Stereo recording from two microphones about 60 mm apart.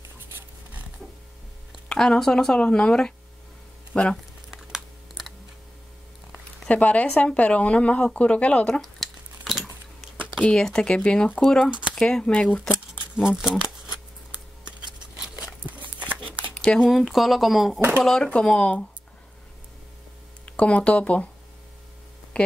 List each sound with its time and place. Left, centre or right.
1.9 s speech: centre
4.5 s typing: centre
6.7 s speech: left
8.8 s a sound: centre
10.4 s speech: centre
12.9 s a sound: centre
15.1 s a sound: centre
16.5 s speech: centre
16.9 s speech: centre
18.2 s speech: centre
20.4 s speech: left